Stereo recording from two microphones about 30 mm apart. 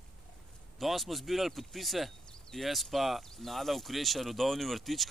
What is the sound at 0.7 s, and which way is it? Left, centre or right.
Speech, centre.